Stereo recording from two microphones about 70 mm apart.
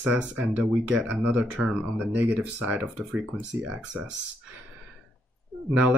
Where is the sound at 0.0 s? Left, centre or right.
Centre.